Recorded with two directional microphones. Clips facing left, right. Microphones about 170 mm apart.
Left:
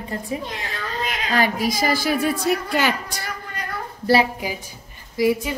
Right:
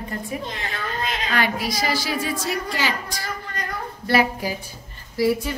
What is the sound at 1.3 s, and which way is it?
A woman's voice, 45° left (ahead or behind).